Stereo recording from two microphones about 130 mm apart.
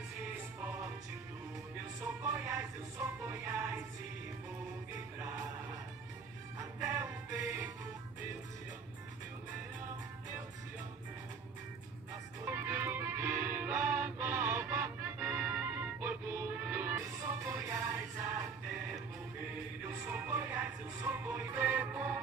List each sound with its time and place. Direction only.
0.2 s music: 15° right (ahead or behind)
2.0 s music: 20° right (ahead or behind)
12.1 s music: 20° right (ahead or behind)
19.5 s music: 15° right (ahead or behind)